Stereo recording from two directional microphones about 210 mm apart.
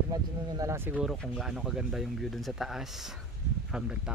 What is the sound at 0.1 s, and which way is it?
Speech, 15° right (ahead or behind).